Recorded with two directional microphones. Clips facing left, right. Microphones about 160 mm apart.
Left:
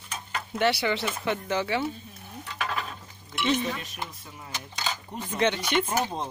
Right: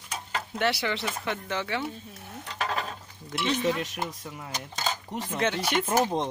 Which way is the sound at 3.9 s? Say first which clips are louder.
Right 4 dB; 45° right (ahead or behind).